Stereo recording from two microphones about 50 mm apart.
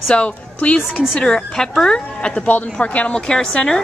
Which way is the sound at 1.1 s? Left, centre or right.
Centre.